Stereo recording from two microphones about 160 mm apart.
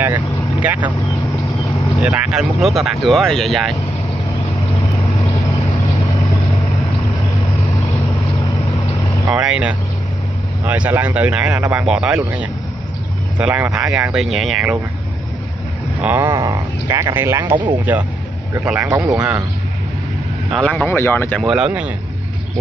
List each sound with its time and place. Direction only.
0.0 s vehicle: 10° right (ahead or behind)
2.0 s speech: 5° right (ahead or behind)
9.3 s speech: 5° right (ahead or behind)
12.2 s speech: 20° right (ahead or behind)
14.1 s speech: centre (ahead or behind)
16.0 s speech: 15° right (ahead or behind)
20.5 s speech: 10° left (ahead or behind)
21.4 s speech: 5° right (ahead or behind)